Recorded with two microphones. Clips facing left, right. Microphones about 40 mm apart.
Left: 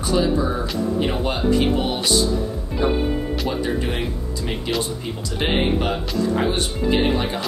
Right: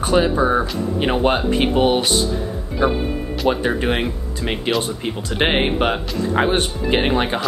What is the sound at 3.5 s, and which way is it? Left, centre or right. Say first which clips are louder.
Speech: right 7 dB; right.